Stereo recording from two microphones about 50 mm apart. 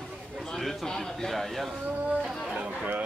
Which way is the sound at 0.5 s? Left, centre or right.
Centre.